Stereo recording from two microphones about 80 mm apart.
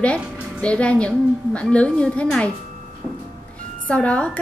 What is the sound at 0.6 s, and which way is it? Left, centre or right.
A woman's voice, centre.